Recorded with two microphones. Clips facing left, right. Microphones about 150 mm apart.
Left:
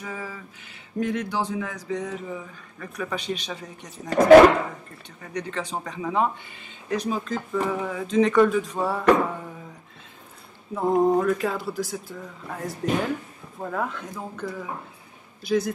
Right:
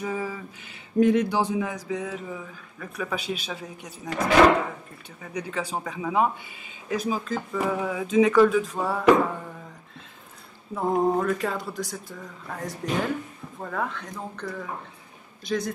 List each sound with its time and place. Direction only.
0.0 s a sound: 15° right (ahead or behind)
0.9 s speech: 15° right (ahead or behind)
5.2 s speech: 5° right (ahead or behind)
10.7 s speech: centre (ahead or behind)